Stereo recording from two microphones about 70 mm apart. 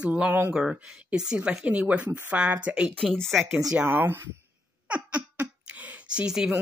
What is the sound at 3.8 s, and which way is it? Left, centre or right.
Speech, right.